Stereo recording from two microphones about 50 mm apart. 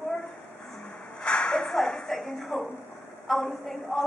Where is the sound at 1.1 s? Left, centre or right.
Centre.